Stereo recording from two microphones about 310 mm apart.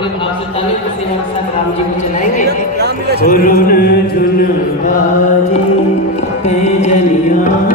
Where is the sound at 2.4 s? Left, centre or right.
Right.